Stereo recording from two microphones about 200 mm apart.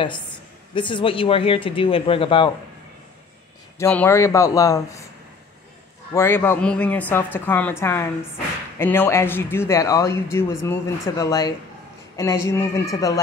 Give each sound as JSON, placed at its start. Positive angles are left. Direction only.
{"t": 0.7, "sound": "speech", "side_deg": 25}
{"t": 3.7, "sound": "speech", "side_deg": 10}
{"t": 6.1, "sound": "speech", "side_deg": 10}